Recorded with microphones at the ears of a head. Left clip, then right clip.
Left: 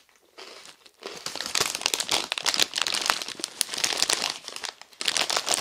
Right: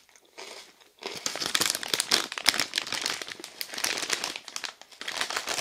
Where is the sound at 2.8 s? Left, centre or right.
Left.